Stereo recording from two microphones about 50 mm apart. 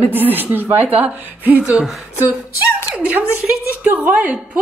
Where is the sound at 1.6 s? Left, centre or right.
Centre.